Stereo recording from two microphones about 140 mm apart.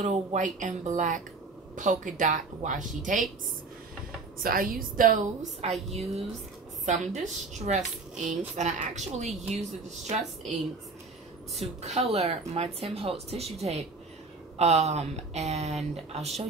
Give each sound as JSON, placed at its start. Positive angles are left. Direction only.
{"t": 0.0, "sound": "speech", "side_deg": -55}
{"t": 4.4, "sound": "a woman's voice", "side_deg": -90}
{"t": 5.6, "sound": "a woman's voice", "side_deg": -50}
{"t": 11.8, "sound": "a woman's voice", "side_deg": -45}